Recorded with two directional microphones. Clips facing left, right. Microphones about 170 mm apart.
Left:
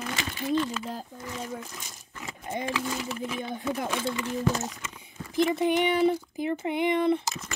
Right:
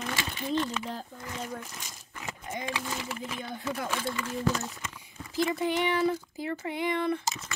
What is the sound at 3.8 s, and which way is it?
Speech, 20° left (ahead or behind).